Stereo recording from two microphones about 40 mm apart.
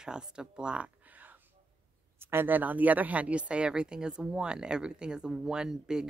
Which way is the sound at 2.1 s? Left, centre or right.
Right.